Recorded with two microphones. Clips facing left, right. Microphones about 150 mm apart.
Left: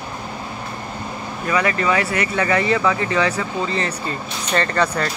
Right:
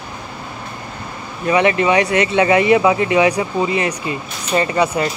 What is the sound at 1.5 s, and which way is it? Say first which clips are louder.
Speech: right 5 dB; 25° right (ahead or behind).